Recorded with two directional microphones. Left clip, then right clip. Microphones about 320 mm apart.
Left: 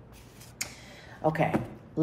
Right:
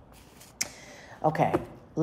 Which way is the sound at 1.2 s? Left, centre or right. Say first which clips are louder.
Right 2 dB; right.